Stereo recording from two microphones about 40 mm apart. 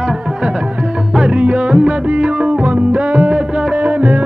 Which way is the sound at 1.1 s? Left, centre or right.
Right.